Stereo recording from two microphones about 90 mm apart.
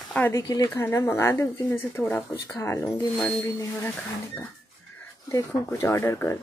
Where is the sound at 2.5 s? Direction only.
35° left (ahead or behind).